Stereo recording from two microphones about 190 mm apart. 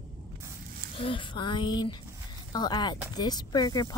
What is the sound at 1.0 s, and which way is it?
A woman's voice, 25° left (ahead or behind).